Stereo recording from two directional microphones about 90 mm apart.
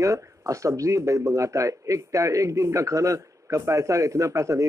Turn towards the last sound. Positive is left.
turn(degrees=-35)  # may be behind; listen again after turning